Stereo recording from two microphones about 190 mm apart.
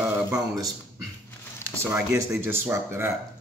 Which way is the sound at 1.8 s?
10° right (ahead or behind).